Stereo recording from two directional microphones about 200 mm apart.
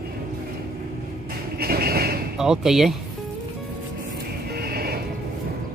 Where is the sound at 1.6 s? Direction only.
50° right (ahead or behind).